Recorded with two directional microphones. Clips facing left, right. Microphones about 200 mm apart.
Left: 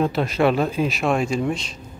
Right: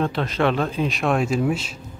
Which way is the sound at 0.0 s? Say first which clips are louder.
Left 2 dB; 10° left (ahead or behind).